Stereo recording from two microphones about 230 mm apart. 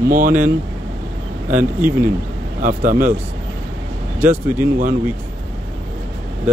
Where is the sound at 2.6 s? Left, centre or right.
Right.